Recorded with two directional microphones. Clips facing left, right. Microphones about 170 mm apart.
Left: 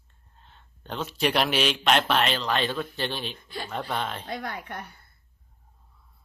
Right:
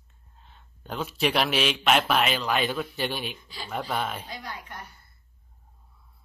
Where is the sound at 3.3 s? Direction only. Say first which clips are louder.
Left 5 dB; 55° left (ahead or behind).